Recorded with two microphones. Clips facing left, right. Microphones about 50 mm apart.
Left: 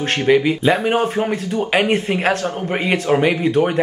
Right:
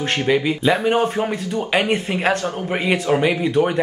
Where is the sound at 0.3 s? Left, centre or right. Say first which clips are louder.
Left 4 dB; centre.